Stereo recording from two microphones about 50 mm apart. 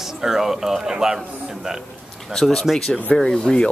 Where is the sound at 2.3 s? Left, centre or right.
Centre.